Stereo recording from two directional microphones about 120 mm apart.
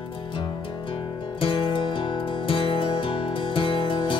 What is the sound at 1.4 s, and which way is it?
Music, 45° left (ahead or behind).